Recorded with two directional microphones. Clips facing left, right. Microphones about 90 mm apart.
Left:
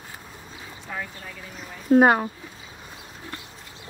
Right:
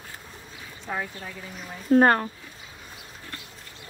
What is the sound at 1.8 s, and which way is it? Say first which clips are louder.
Speech: left 2 dB; 10° left (ahead or behind).